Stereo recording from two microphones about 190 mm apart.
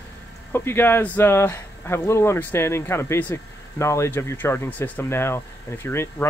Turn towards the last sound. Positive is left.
turn(degrees=15)  # may be behind; listen again after turning